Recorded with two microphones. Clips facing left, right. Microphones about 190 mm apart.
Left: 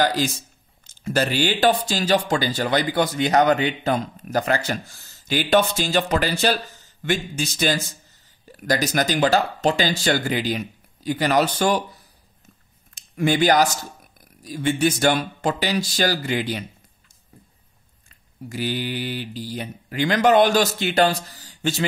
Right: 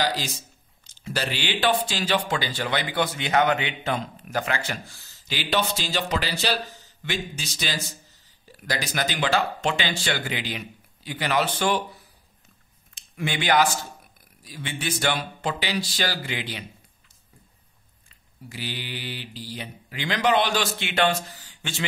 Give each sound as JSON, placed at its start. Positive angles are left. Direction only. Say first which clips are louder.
{"t": 0.0, "sound": "speech", "louder": "left 6 dB", "side_deg": 50}
{"t": 12.9, "sound": "speech", "louder": "left 9 dB", "side_deg": 45}
{"t": 18.0, "sound": "speech", "louder": "left 7 dB", "side_deg": 45}